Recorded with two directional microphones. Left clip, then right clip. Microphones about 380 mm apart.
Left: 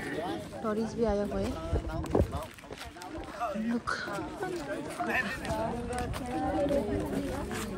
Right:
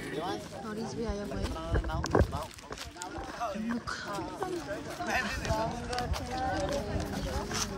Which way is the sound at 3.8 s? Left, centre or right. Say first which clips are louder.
Left 4 dB; centre.